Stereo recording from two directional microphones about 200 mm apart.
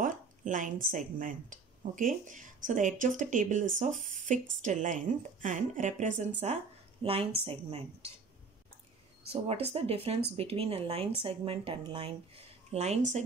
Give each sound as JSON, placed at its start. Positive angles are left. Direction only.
{"t": 0.0, "sound": "a sound", "side_deg": -40}
{"t": 0.9, "sound": "a woman's voice", "side_deg": -40}
{"t": 9.3, "sound": "a woman's voice", "side_deg": -30}